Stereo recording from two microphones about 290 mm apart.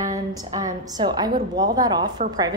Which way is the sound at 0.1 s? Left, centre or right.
Centre.